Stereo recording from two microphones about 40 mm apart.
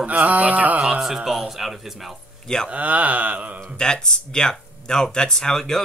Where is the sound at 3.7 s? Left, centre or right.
Centre.